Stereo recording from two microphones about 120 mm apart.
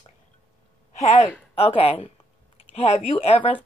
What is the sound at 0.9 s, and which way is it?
Speech, 65° left (ahead or behind).